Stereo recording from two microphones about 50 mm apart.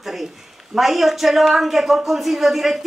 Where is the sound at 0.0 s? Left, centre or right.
Centre.